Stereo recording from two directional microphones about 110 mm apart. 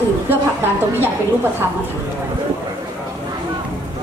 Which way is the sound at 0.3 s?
20° right (ahead or behind).